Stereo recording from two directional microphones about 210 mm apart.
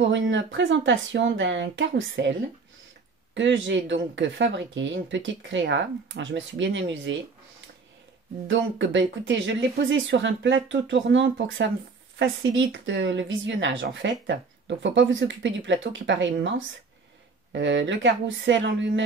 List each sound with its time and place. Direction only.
0.0 s speech: 60° right (ahead or behind)
3.3 s speech: 60° right (ahead or behind)
8.5 s speech: 65° right (ahead or behind)